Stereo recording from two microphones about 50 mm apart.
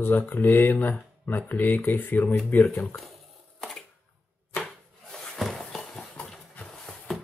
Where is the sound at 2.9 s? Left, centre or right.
Centre.